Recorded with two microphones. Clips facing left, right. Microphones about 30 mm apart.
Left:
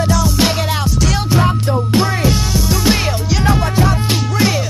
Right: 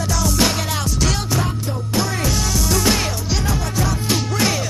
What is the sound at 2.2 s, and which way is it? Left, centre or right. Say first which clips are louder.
Music: left 4 dB; left.